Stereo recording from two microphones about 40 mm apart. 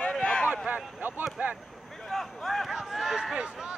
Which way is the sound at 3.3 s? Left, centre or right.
Right.